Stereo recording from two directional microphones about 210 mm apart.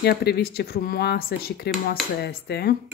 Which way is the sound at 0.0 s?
50° left (ahead or behind).